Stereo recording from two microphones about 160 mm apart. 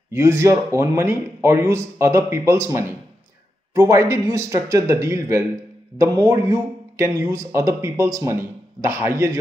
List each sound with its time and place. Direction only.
0.1 s a man's voice: 20° right (ahead or behind)